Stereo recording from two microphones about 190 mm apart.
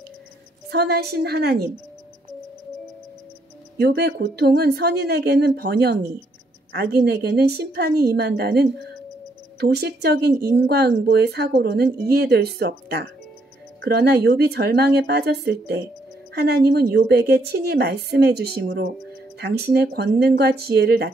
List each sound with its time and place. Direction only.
0.7 s speech: 55° right (ahead or behind)
3.7 s speech: 60° right (ahead or behind)